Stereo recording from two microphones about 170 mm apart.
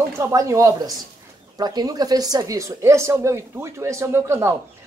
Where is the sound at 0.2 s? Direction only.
20° right (ahead or behind).